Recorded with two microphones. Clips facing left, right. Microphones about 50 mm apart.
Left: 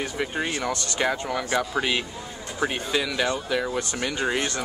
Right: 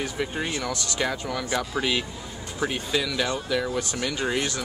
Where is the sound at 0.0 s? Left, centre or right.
Centre.